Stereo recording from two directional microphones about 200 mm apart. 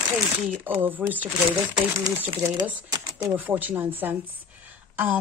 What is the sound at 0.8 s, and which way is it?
Speech, 10° right (ahead or behind).